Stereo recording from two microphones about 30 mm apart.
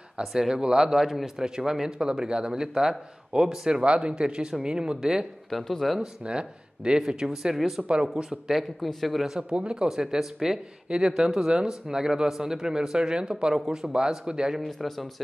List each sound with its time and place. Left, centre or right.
0.2 s speech: centre
0.8 s speech: centre
3.8 s speech: right
5.5 s speech: centre
6.2 s speech: right
7.5 s speech: centre
9.8 s speech: centre
10.9 s speech: right
14.8 s speech: centre